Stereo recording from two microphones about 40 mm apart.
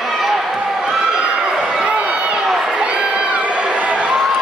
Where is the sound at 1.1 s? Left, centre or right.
Right.